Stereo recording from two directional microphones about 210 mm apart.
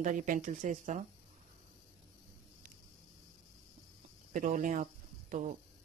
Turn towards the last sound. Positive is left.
turn(degrees=-35)  # may be behind; listen again after turning